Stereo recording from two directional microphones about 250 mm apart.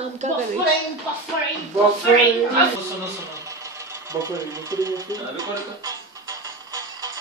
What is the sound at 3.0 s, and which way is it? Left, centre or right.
Sewing machine, centre.